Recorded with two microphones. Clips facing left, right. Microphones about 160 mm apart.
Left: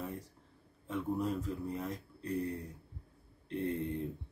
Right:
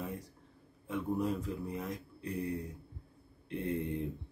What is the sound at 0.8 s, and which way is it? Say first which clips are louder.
Speech: right 1 dB; 15° right (ahead or behind).